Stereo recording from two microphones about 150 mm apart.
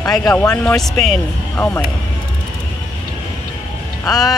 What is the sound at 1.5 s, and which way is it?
Speech, 15° left (ahead or behind).